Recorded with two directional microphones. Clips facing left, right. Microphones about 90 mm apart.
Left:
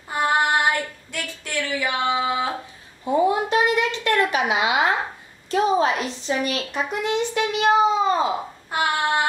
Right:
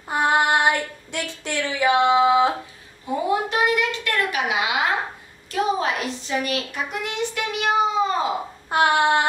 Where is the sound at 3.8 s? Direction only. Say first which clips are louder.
Left 3 dB; 25° left (ahead or behind).